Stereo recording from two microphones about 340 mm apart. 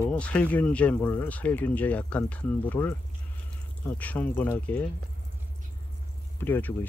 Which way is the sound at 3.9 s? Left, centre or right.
Centre.